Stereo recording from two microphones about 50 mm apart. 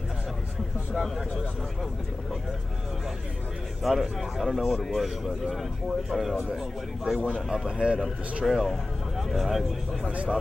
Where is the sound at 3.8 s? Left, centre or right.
Centre.